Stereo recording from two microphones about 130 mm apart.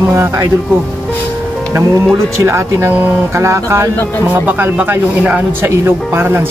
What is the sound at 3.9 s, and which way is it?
Speech, 15° left (ahead or behind).